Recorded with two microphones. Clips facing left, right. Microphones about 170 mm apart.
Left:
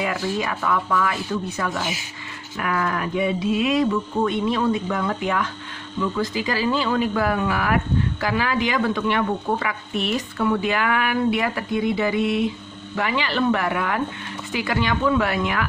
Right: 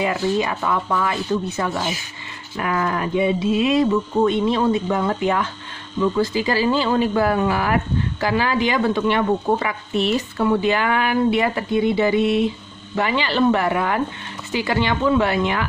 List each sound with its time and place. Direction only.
0.0 s speech: 25° right (ahead or behind)